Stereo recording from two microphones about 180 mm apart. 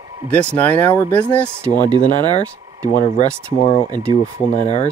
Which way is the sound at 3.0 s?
35° left (ahead or behind).